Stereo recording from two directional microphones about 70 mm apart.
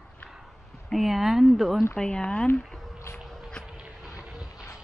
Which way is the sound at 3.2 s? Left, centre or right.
Centre.